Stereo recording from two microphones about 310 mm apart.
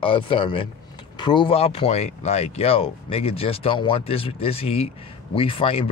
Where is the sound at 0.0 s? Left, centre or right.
Centre.